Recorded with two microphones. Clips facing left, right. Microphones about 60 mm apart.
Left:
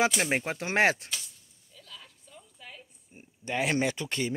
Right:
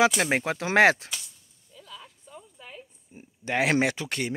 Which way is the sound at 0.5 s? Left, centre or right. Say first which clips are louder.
Right 7 dB; right.